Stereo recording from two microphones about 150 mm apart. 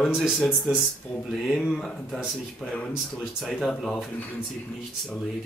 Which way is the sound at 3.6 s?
5° left (ahead or behind).